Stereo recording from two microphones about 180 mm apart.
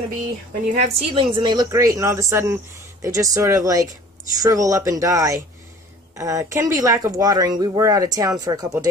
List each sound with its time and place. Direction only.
0.7 s a woman's voice: 30° right (ahead or behind)